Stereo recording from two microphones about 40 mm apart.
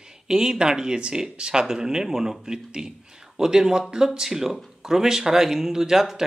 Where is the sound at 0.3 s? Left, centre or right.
Centre.